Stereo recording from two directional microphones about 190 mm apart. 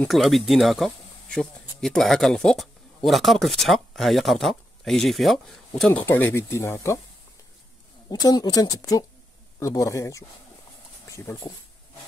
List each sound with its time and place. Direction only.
0.0 s speech: centre (ahead or behind)
8.1 s speech: 20° left (ahead or behind)